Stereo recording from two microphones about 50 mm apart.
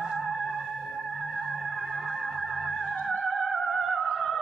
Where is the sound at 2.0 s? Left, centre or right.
Centre.